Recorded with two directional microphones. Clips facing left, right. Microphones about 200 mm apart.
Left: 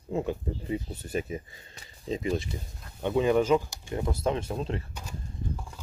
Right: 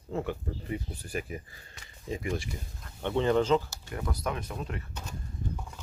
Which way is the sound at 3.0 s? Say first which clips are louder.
Left 2 dB; 10° left (ahead or behind).